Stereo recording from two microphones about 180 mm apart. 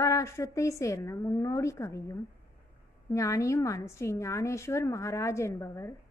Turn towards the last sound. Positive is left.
turn(degrees=15)  # may be behind; listen again after turning